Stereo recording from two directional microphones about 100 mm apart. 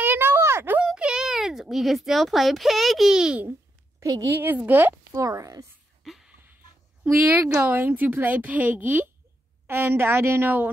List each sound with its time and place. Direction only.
0.0 s a sound: 20° right (ahead or behind)
0.8 s a child's voice: 10° right (ahead or behind)
4.0 s a woman's voice: 35° right (ahead or behind)
4.3 s a woman's voice: 20° right (ahead or behind)
5.1 s speech: 35° right (ahead or behind)
6.0 s a sound: 5° right (ahead or behind)
7.1 s speech: 20° right (ahead or behind)